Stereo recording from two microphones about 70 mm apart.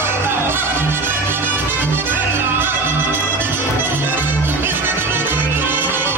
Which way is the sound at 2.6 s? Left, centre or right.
Right.